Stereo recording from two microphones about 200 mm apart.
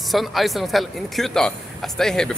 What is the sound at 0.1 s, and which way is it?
Speech, centre (ahead or behind).